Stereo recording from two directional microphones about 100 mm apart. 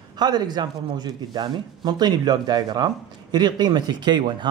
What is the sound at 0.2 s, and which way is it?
Speech, 45° right (ahead or behind).